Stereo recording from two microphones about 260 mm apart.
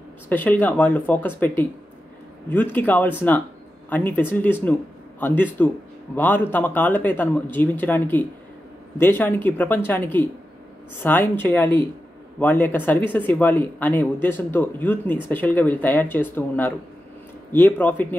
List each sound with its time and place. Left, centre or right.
0.3 s speech: centre